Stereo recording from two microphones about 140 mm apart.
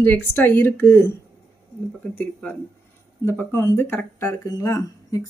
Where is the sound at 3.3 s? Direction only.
15° left (ahead or behind).